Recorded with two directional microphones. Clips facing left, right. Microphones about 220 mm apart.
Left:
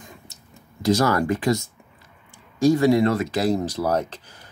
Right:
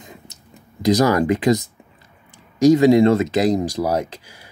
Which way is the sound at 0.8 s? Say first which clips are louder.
Right 4 dB; 15° right (ahead or behind).